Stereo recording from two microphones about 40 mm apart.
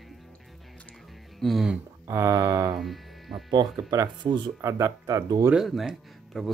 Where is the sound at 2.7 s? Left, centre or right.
Centre.